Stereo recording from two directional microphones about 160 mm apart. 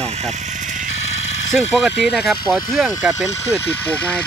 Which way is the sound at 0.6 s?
50° right (ahead or behind).